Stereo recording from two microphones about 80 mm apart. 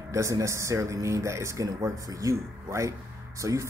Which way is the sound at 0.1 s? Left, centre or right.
Right.